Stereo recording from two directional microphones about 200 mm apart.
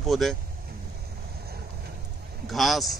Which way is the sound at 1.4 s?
50° right (ahead or behind).